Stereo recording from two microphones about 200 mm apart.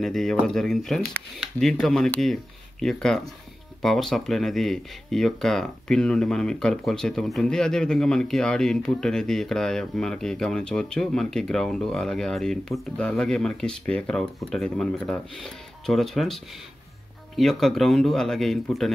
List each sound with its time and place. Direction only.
0.0 s speech: centre (ahead or behind)
17.4 s speech: centre (ahead or behind)